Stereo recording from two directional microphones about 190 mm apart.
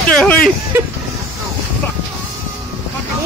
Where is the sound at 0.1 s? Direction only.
5° left (ahead or behind).